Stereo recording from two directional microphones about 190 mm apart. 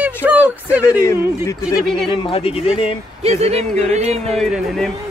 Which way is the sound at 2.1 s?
30° left (ahead or behind).